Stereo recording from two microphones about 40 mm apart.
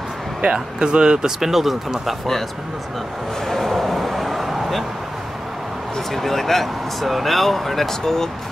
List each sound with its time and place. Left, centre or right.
0.4 s speech: right
1.4 s speech: centre
3.4 s a sound: centre
5.9 s speech: centre